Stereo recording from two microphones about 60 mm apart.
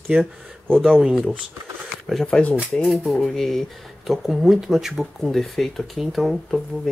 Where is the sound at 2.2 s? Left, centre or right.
Centre.